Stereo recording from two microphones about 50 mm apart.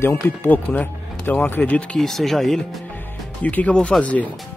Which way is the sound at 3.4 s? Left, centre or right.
Left.